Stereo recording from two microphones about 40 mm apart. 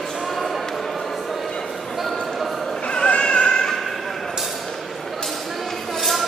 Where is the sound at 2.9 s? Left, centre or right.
Left.